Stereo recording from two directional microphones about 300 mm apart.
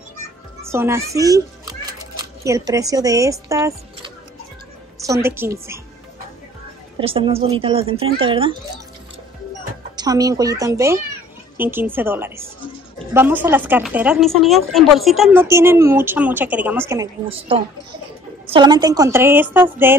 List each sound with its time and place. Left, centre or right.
0.7 s a child's voice: centre
7.0 s a woman's voice: centre
9.9 s a woman's voice: centre